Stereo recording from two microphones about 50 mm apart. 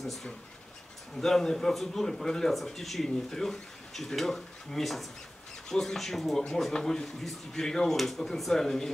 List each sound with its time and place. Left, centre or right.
0.0 s speech: centre